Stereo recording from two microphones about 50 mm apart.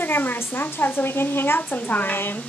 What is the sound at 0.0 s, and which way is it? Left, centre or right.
A woman's voice, left.